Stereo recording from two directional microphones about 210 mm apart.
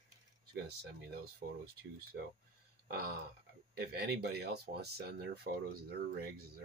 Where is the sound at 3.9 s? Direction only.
50° right (ahead or behind).